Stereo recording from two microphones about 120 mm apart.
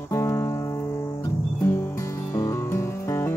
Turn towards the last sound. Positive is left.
turn(degrees=20)  # may be behind; listen again after turning